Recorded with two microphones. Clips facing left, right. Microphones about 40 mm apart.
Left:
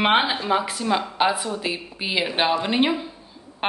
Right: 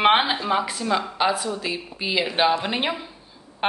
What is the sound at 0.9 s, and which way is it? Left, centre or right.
A woman's voice, centre.